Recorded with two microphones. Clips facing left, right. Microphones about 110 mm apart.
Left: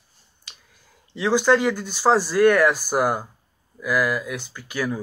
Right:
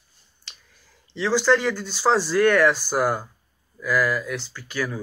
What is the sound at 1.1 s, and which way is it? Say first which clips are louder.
Speech: left 2 dB; 15° left (ahead or behind).